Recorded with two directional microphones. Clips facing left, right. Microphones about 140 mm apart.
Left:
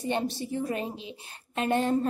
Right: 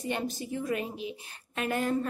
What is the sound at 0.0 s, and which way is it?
A woman's voice, 30° left (ahead or behind).